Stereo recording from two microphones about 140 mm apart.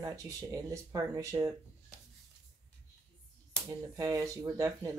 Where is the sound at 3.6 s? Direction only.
25° right (ahead or behind).